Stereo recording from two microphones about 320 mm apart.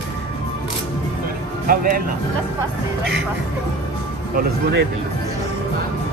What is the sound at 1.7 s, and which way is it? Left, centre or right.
Speech, right.